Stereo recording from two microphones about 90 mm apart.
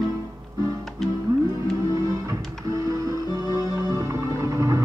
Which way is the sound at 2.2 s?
40° right (ahead or behind).